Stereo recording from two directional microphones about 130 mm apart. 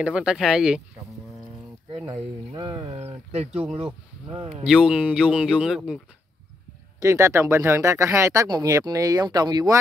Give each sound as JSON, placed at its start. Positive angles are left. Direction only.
{"t": 0.0, "sound": "speech", "side_deg": -5}
{"t": 2.5, "sound": "speech", "side_deg": -35}
{"t": 3.3, "sound": "speech", "side_deg": -55}
{"t": 4.6, "sound": "speech", "side_deg": -5}
{"t": 7.0, "sound": "speech", "side_deg": -20}